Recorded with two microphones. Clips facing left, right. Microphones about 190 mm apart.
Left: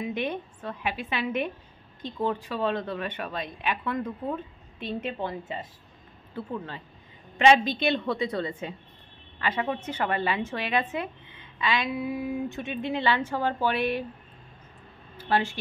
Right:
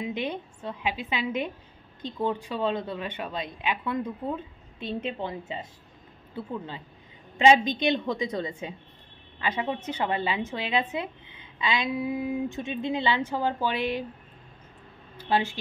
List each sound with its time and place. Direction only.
0.0 s a woman's voice: 15° right (ahead or behind)
6.3 s a woman's voice: 10° right (ahead or behind)
15.2 s speech: 15° right (ahead or behind)